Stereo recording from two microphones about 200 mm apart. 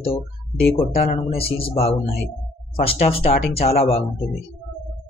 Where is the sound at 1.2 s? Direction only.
30° left (ahead or behind).